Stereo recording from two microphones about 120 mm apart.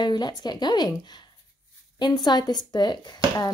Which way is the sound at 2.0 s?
35° left (ahead or behind).